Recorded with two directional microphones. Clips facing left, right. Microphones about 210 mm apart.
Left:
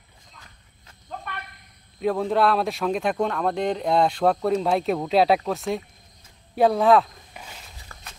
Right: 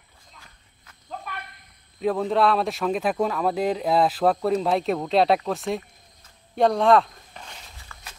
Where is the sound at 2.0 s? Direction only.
Centre (ahead or behind).